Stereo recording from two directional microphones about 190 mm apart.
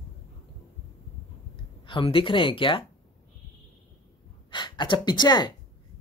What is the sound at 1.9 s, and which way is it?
Speech, 30° left (ahead or behind).